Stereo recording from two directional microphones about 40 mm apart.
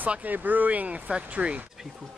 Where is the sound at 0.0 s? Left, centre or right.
Right.